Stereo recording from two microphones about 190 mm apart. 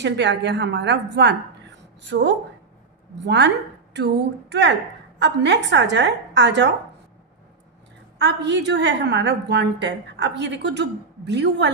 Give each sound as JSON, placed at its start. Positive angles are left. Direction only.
{"t": 0.0, "sound": "a woman's voice", "side_deg": -65}
{"t": 8.2, "sound": "a woman's voice", "side_deg": -65}